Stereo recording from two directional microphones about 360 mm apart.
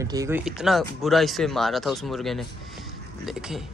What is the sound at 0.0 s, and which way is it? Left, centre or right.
Speech, centre.